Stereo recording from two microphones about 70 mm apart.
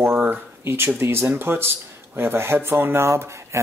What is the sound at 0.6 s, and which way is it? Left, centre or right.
Speech, right.